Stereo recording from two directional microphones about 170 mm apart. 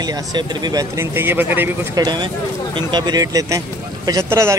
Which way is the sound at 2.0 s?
25° right (ahead or behind).